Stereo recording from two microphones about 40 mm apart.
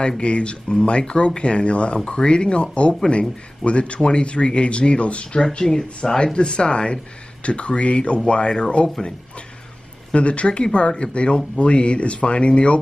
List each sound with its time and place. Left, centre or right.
0.2 s speech: left
10.1 s speech: left